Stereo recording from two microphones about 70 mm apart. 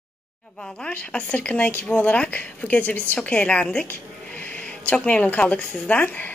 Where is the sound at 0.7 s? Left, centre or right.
Centre.